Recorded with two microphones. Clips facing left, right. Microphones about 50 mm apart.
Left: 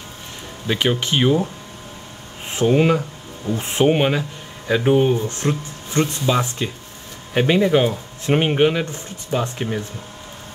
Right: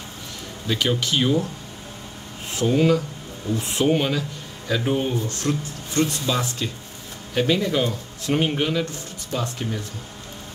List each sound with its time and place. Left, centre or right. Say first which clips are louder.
0.7 s speech: left 3 dB; left
2.5 s speech: left 3 dB; left